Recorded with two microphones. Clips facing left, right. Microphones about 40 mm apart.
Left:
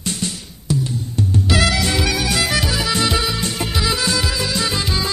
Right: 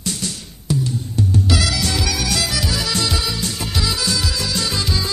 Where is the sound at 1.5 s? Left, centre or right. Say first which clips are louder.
Left 3 dB; left.